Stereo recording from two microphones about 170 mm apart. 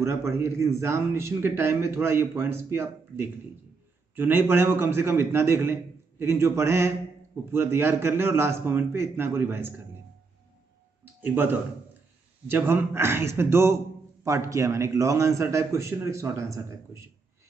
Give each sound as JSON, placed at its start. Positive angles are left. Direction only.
{"t": 0.0, "sound": "speech", "side_deg": -15}
{"t": 11.1, "sound": "speech", "side_deg": -10}